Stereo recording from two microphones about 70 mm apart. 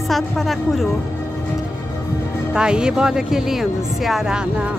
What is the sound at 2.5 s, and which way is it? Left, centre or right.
Speech, centre.